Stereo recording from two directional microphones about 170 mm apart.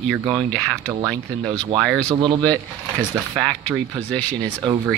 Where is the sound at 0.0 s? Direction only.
5° right (ahead or behind).